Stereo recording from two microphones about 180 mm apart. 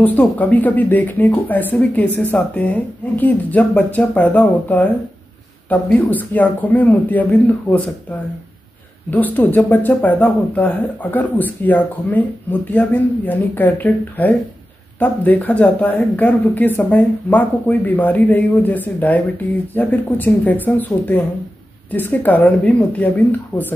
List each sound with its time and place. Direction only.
0.0 s speech: 10° left (ahead or behind)
9.1 s speech: 10° left (ahead or behind)
23.5 s speech: 20° left (ahead or behind)